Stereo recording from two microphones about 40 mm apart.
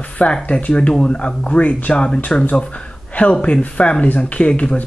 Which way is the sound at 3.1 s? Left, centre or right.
Left.